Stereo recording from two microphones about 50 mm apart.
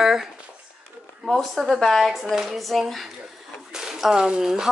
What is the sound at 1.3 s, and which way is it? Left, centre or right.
Speech, centre.